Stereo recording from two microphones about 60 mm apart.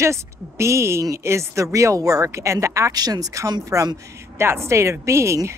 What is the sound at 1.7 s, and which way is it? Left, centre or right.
A woman's voice, right.